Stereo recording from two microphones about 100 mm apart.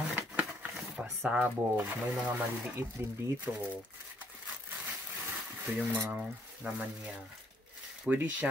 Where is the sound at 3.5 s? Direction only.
20° right (ahead or behind).